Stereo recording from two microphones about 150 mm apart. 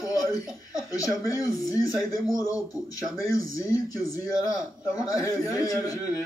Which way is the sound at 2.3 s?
20° left (ahead or behind).